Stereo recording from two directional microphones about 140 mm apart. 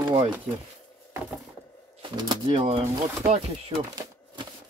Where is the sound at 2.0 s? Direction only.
30° right (ahead or behind).